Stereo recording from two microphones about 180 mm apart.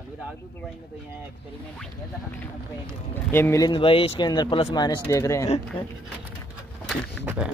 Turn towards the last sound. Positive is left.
turn(degrees=-10)  # may be behind; listen again after turning